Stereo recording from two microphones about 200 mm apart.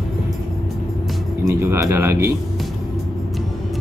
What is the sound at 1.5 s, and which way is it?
Speech, 15° right (ahead or behind).